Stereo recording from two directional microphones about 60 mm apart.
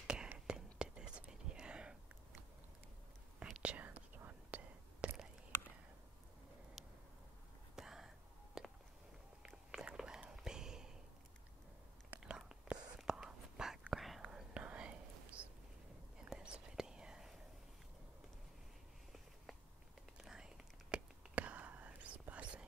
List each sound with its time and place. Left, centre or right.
0.0 s whispering: centre
3.6 s whispering: right
6.8 s a sound: centre
7.7 s whispering: centre
8.6 s a sound: centre
9.4 s whispering: centre
12.2 s whispering: centre
14.5 s whispering: right
20.2 s whispering: centre
21.4 s whispering: right